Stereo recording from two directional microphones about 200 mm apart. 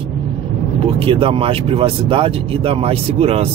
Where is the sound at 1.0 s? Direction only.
25° right (ahead or behind).